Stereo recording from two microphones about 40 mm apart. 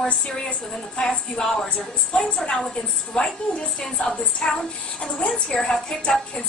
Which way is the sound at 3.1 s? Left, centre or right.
Centre.